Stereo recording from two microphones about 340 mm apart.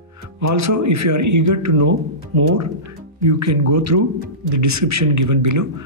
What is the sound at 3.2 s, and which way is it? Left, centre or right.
Speech, right.